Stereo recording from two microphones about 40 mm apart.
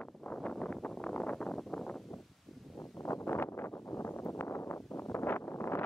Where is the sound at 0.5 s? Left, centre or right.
Left.